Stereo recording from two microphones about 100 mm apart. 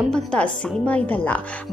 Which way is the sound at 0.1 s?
10° left (ahead or behind).